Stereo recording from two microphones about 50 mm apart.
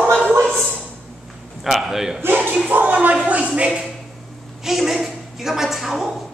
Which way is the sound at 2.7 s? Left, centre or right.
Right.